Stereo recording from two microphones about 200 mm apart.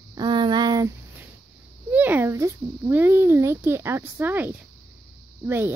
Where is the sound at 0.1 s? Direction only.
20° right (ahead or behind).